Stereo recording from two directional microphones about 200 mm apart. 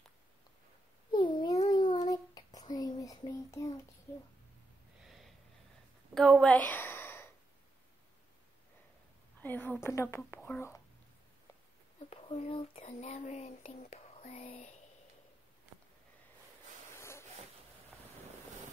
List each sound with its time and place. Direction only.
1.1 s a sound: 25° left (ahead or behind)
1.7 s child singing: 25° left (ahead or behind)
5.0 s snort: centre (ahead or behind)
6.1 s a sound: 5° left (ahead or behind)
9.4 s speech: 10° left (ahead or behind)
12.1 s speech: 30° left (ahead or behind)